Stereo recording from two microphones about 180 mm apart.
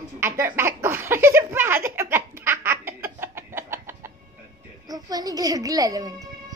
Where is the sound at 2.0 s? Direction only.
15° right (ahead or behind).